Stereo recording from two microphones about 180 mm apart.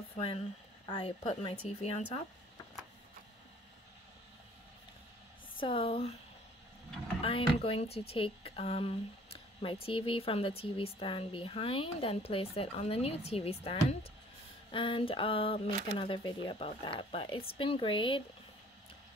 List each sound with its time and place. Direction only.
0.8 s speech: 25° left (ahead or behind)
1.2 s speech: 35° left (ahead or behind)
5.6 s speech: 30° left (ahead or behind)
7.2 s speech: 30° left (ahead or behind)